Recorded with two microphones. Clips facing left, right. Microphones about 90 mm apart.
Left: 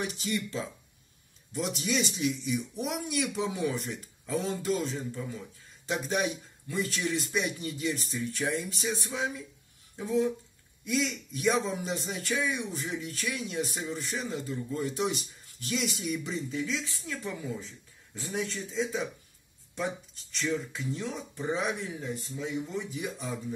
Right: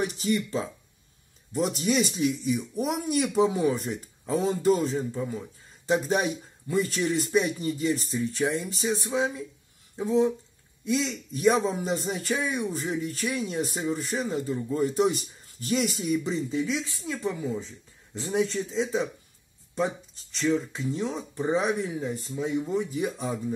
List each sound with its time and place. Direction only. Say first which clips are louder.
0.0 s a man's voice: right 6 dB; 35° right (ahead or behind)
11.3 s speech: right 5 dB; 40° right (ahead or behind)
20.4 s speech: right 6 dB; 25° right (ahead or behind)
22.0 s speech: right 5 dB; 20° right (ahead or behind)
22.7 s speech: right 8 dB; 40° right (ahead or behind)
23.0 s speech: right 6 dB; 25° right (ahead or behind)